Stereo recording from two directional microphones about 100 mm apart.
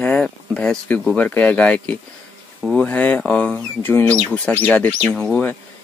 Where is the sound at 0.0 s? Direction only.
10° left (ahead or behind).